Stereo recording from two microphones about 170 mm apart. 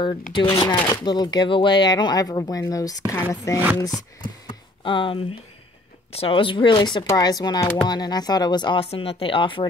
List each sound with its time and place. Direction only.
0.3 s speech: 30° left (ahead or behind)
4.5 s a sound: 30° left (ahead or behind)
6.1 s speech: 30° left (ahead or behind)